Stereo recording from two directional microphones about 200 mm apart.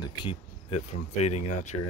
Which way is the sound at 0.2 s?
30° left (ahead or behind).